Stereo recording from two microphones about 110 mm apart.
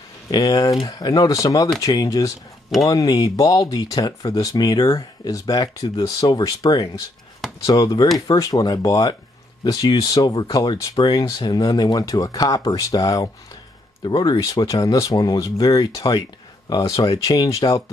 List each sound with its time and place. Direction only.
0.3 s speech: 40° left (ahead or behind)